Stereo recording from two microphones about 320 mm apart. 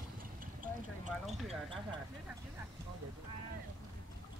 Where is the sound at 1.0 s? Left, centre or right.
Centre.